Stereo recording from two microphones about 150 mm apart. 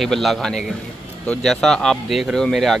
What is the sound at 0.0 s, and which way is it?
Speech, centre (ahead or behind).